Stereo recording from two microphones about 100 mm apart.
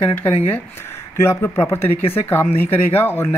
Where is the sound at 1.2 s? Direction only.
25° left (ahead or behind).